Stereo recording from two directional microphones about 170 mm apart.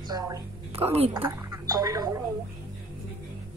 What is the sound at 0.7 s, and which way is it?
Speech, 35° right (ahead or behind).